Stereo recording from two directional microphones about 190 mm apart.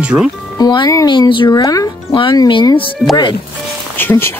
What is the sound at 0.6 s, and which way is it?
Speech, 20° left (ahead or behind).